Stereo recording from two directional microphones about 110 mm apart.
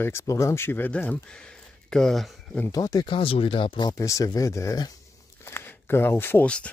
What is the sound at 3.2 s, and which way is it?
Speech, 55° left (ahead or behind).